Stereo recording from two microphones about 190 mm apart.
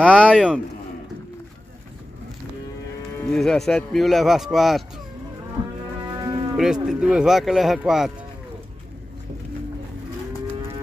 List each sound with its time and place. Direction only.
0.0 s speech: 5° left (ahead or behind)
3.3 s speech: 5° left (ahead or behind)
6.0 s cattle: 20° right (ahead or behind)
6.5 s speech: 5° right (ahead or behind)